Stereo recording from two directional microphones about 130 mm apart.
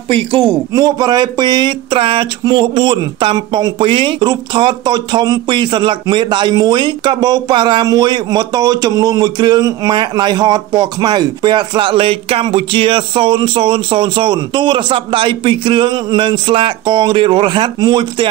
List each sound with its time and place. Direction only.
0.1 s speech: 40° right (ahead or behind)
0.7 s speech: 30° right (ahead or behind)